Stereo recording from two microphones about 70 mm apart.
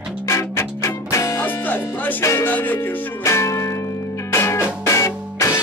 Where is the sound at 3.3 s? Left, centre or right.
Left.